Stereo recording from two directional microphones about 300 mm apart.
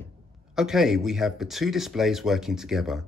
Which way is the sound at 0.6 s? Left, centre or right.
Centre.